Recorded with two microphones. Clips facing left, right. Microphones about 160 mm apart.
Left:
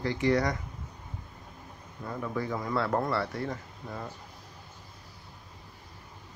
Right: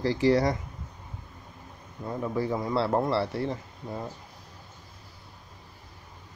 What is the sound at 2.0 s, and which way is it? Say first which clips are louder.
Speech: right 4 dB; 25° right (ahead or behind).